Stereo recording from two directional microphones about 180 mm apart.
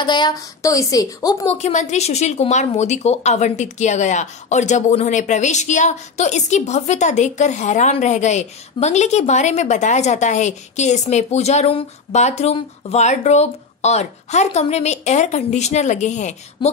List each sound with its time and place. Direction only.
0.0 s a woman's voice: 25° left (ahead or behind)
1.5 s a woman's voice: 40° left (ahead or behind)